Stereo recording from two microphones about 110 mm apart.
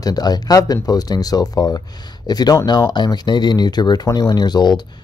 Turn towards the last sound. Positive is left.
turn(degrees=40)  # may be behind; listen again after turning